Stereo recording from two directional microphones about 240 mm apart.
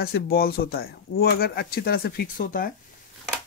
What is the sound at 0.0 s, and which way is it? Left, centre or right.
Speech, left.